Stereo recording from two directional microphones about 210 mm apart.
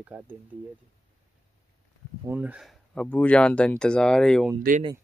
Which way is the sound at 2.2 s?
5° right (ahead or behind).